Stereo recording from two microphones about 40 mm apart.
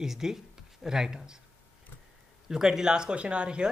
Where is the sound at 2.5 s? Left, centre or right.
Centre.